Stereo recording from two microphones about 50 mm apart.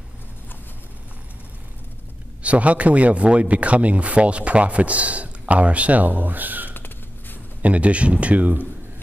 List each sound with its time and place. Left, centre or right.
2.4 s speech: right
6.7 s a sound: left
7.6 s speech: right